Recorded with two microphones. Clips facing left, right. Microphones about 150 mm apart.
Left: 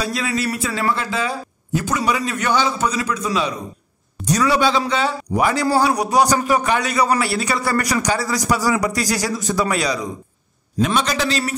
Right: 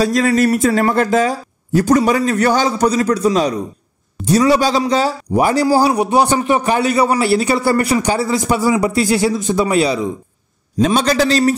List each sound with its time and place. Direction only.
0.0 s a man's voice: 45° right (ahead or behind)